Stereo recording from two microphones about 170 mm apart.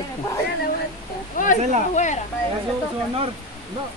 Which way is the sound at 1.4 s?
50° left (ahead or behind).